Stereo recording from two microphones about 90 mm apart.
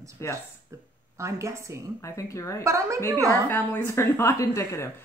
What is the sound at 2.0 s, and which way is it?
Speech, 35° left (ahead or behind).